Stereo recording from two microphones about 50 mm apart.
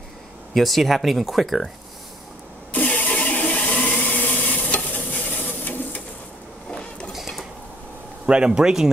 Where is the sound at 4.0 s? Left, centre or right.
Left.